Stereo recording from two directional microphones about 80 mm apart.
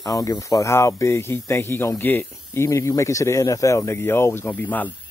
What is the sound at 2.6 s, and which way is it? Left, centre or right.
Speech, left.